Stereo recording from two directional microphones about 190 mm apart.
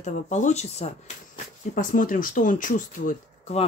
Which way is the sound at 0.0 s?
40° left (ahead or behind).